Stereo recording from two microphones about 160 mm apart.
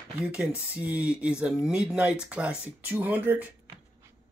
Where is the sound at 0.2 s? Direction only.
5° right (ahead or behind).